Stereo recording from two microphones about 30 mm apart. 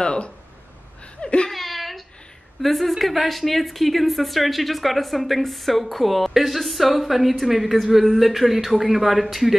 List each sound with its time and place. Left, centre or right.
0.0 s a sound: left
1.2 s laughter: left
1.5 s whimper: centre
2.6 s speech: centre